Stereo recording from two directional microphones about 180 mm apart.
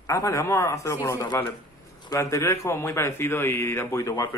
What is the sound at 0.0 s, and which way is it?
A man's voice, 20° left (ahead or behind).